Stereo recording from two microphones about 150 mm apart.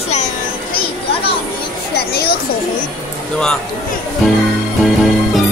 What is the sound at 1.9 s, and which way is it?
Speech, 90° left.